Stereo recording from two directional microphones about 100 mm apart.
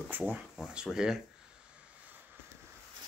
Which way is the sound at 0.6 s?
5° right (ahead or behind).